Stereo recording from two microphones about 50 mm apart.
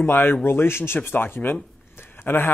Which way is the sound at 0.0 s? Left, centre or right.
Left.